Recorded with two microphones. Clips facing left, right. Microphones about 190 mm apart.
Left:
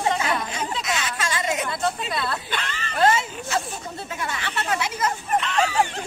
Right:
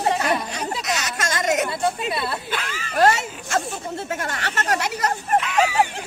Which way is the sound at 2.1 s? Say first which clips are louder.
Right 1 dB; 5° right (ahead or behind).